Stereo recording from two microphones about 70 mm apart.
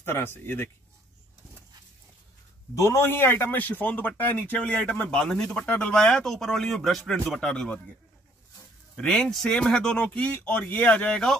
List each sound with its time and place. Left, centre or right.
0.0 s a man's voice: left
2.7 s a man's voice: left; by 7.7 s centre
8.9 s speech: centre